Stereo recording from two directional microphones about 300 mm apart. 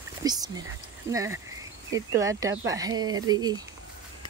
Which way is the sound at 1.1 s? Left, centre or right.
Centre.